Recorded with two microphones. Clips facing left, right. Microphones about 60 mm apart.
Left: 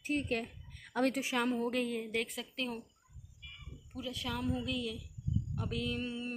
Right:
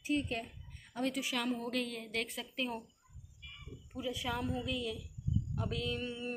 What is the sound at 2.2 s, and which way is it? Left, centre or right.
Speech, centre.